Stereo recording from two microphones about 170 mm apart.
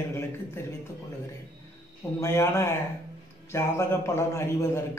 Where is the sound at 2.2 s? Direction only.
15° left (ahead or behind).